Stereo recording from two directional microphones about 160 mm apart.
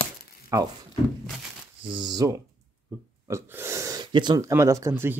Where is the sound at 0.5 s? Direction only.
20° right (ahead or behind).